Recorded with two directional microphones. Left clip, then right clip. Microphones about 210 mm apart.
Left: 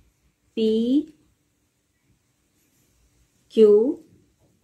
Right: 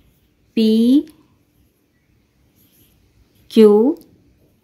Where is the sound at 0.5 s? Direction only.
50° right (ahead or behind).